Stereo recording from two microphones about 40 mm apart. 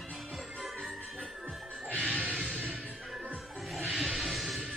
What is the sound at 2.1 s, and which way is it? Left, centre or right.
Music, right.